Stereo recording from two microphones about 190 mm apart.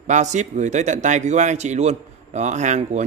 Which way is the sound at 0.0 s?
40° right (ahead or behind).